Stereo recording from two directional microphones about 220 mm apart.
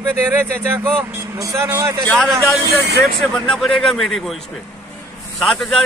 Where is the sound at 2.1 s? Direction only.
5° left (ahead or behind).